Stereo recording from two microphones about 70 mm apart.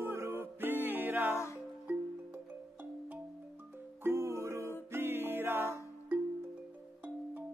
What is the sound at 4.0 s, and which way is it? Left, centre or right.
Music, right.